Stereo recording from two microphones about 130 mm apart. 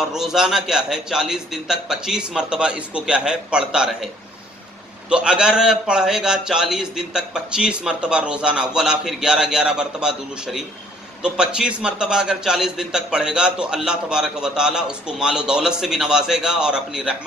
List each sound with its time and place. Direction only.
0.1 s a man's voice: 5° right (ahead or behind)
5.1 s a man's voice: 5° right (ahead or behind)